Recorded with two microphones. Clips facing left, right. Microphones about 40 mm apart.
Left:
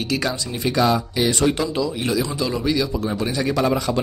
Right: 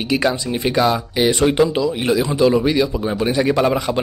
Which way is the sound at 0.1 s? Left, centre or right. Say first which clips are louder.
Right 8 dB; right.